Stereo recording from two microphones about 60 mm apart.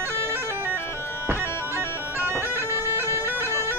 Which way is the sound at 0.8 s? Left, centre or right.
Left.